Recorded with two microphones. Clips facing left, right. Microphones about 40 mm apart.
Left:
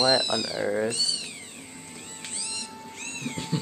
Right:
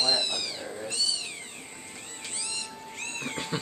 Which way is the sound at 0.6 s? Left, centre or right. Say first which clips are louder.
Left 11 dB; left.